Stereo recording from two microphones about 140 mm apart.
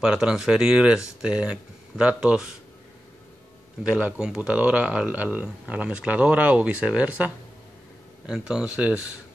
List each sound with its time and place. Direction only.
0.0 s speech: 5° right (ahead or behind)
3.8 s speech: 5° right (ahead or behind)